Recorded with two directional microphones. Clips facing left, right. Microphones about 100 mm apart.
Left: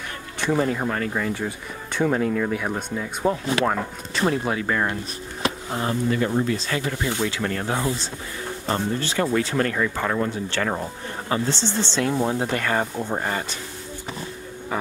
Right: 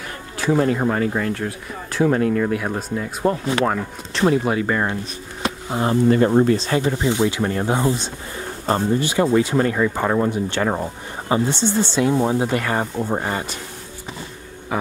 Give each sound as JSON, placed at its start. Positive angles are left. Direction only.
{"t": 0.4, "sound": "speech", "side_deg": 0}
{"t": 0.7, "sound": "speech", "side_deg": -10}
{"t": 1.2, "sound": "speech", "side_deg": 0}
{"t": 6.0, "sound": "speech", "side_deg": -40}
{"t": 6.6, "sound": "speech", "side_deg": -25}